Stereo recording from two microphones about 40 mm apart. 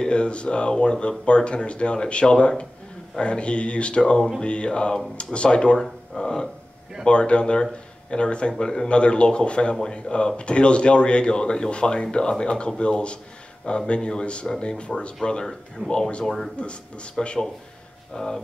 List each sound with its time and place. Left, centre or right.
0.0 s speech: left
7.1 s speech: left
15.8 s speech: right
16.5 s speech: left
18.1 s speech: centre